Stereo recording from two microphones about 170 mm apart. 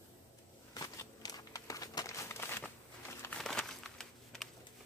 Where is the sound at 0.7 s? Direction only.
20° left (ahead or behind).